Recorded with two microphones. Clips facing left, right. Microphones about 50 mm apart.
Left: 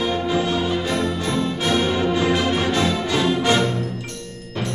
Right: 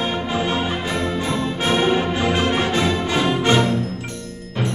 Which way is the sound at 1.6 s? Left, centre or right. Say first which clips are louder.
Right 3 dB; right.